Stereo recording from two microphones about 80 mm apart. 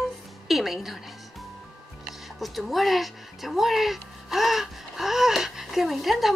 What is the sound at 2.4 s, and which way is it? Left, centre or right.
Speech, centre.